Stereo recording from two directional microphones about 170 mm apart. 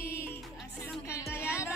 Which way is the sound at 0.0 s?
15° left (ahead or behind).